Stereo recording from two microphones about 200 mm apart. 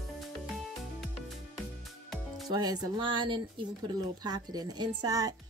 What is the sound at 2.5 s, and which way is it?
Speech, 20° right (ahead or behind).